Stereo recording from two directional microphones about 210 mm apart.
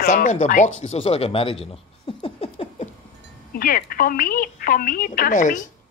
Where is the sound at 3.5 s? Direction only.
45° left (ahead or behind).